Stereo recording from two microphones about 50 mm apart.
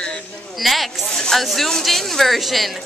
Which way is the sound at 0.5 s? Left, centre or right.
Centre.